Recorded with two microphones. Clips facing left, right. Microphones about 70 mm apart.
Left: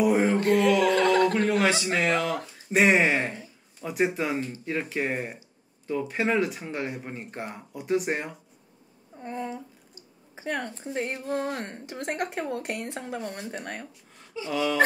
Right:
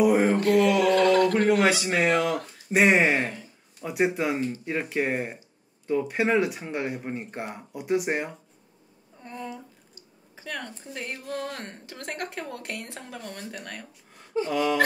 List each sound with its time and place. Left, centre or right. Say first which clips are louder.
0.0 s mantra: right 2 dB; centre
0.4 s mantra: right 1 dB; left
1.5 s speech: right 2 dB; centre
9.2 s speech: left 4 dB; left
14.5 s a sound: right 1 dB; centre